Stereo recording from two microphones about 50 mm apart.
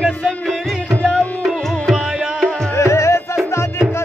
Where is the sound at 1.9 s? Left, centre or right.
Centre.